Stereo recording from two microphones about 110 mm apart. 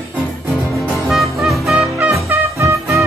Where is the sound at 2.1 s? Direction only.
25° right (ahead or behind).